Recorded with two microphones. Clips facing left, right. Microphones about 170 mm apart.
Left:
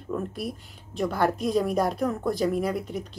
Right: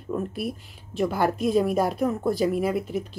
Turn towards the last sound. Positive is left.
turn(degrees=-5)  # may be behind; listen again after turning